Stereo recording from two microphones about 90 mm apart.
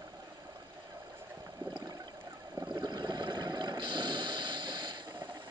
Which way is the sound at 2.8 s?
50° right (ahead or behind).